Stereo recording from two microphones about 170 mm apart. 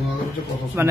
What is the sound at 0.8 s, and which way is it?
Speech, 10° right (ahead or behind).